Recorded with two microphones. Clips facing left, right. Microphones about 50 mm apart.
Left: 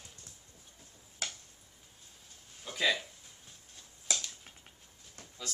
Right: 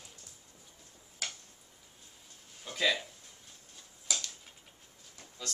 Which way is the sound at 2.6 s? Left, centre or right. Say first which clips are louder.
Even; centre.